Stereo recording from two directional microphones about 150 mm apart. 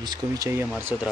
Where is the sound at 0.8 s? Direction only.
15° right (ahead or behind).